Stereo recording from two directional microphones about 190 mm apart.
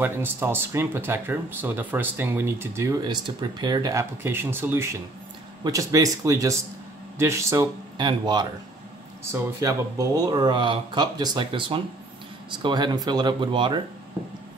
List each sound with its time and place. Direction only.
0.0 s speech: 10° right (ahead or behind)